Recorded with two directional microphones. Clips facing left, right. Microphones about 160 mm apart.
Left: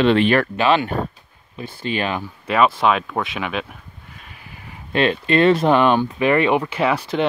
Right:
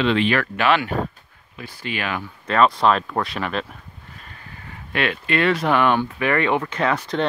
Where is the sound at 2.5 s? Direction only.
5° left (ahead or behind).